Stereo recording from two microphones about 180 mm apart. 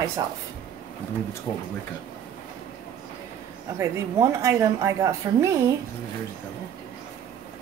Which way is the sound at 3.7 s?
15° right (ahead or behind).